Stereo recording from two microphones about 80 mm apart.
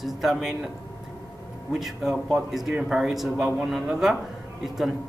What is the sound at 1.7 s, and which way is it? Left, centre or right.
Speech, centre.